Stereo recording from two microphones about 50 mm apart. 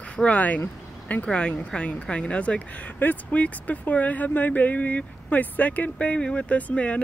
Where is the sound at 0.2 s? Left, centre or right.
Left.